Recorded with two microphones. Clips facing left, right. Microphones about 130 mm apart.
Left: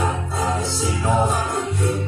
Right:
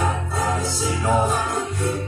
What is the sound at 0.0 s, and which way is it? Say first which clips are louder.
Music: even; 25° left (ahead or behind).